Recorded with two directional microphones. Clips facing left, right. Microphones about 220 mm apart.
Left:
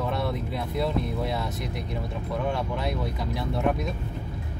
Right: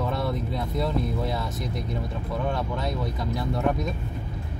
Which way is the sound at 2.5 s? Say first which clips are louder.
Even; centre (ahead or behind).